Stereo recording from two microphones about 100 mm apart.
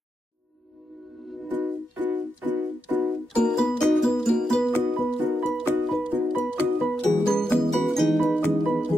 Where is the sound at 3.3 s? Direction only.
5° left (ahead or behind).